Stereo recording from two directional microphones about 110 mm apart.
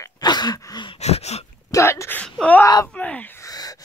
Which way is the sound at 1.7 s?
25° left (ahead or behind).